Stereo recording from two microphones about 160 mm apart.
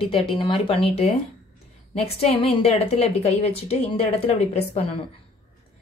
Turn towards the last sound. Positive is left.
turn(degrees=40)  # may be behind; listen again after turning